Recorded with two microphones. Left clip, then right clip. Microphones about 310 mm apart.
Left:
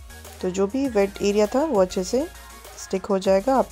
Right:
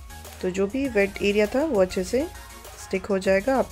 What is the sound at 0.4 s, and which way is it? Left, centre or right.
Speech, centre.